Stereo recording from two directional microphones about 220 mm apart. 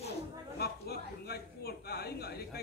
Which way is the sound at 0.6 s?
45° left (ahead or behind).